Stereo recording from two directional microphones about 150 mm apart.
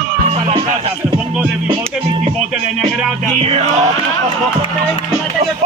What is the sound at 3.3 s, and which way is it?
Music, 45° right (ahead or behind).